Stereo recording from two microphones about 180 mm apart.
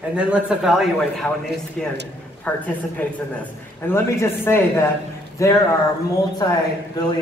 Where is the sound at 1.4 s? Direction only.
70° right (ahead or behind).